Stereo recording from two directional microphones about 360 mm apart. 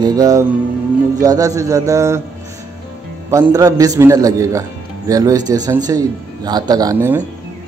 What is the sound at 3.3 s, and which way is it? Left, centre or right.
Speech, centre.